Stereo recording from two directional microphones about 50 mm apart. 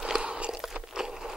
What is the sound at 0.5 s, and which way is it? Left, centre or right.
Crunch, centre.